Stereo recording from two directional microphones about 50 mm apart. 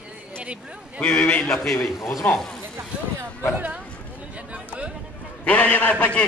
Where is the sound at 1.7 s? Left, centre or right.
Centre.